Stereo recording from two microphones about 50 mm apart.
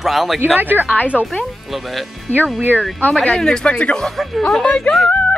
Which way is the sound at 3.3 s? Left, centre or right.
Centre.